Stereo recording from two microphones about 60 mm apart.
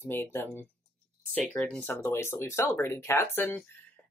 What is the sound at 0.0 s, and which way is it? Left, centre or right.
Speech, left.